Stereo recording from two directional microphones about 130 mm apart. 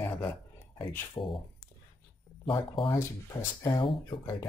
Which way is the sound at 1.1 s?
40° left (ahead or behind).